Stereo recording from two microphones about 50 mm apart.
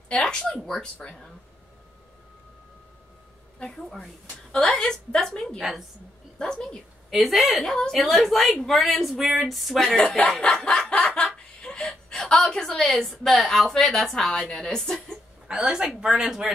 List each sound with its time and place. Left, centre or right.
0.1 s a woman's voice: centre
3.5 s a woman's voice: centre
5.6 s speech: centre
6.3 s a woman's voice: centre
7.1 s speech: centre
7.6 s a woman's voice: centre
7.9 s speech: centre
10.4 s snicker: centre
11.2 s chuckle: centre
12.4 s a woman's voice: centre
15.4 s a woman's voice: centre